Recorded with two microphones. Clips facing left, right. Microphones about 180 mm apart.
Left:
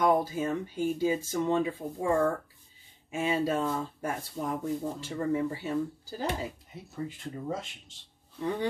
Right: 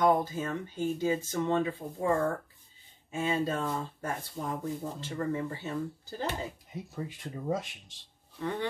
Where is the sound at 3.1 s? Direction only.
10° left (ahead or behind).